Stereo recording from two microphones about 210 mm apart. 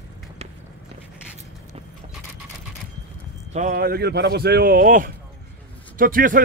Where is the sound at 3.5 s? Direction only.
40° right (ahead or behind).